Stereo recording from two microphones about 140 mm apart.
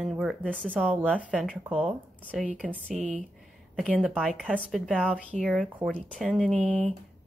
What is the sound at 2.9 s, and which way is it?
Speech, 65° right (ahead or behind).